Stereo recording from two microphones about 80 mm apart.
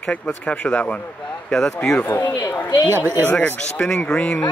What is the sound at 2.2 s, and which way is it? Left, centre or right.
Speech, left.